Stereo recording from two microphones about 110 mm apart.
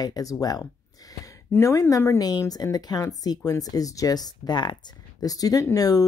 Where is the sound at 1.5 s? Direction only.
25° left (ahead or behind).